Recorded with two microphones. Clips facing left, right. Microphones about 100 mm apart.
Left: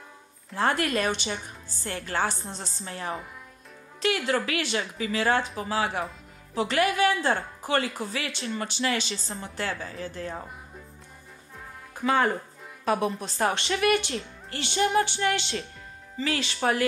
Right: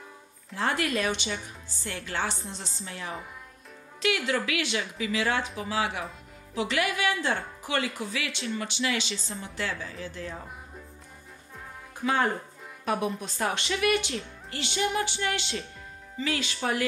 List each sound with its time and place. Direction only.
0.6 s speech: 45° left (ahead or behind)
4.3 s speech: 40° left (ahead or behind)
12.0 s speech: 50° left (ahead or behind)
12.8 s speech: 35° left (ahead or behind)